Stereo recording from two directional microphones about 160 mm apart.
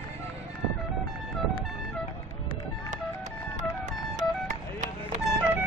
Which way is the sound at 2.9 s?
50° right (ahead or behind).